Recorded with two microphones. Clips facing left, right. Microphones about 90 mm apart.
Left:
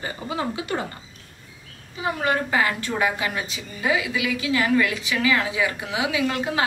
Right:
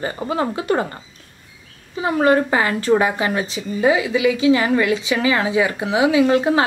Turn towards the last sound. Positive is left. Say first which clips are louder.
# right 9 dB
turn(degrees=-35)  # may be behind; listen again after turning